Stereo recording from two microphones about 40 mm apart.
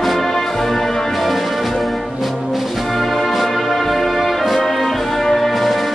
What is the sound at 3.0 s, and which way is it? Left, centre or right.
Music, centre.